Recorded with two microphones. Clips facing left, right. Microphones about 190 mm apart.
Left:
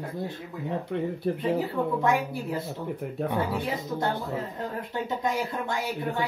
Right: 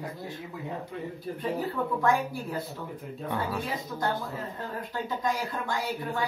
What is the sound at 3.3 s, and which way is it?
Speech, 20° left (ahead or behind).